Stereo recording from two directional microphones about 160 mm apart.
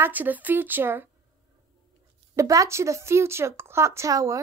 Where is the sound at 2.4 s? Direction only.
20° right (ahead or behind).